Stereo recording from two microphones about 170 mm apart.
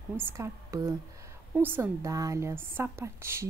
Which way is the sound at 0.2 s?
15° right (ahead or behind).